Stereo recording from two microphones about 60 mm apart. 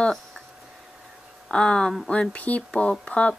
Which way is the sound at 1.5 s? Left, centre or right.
Centre.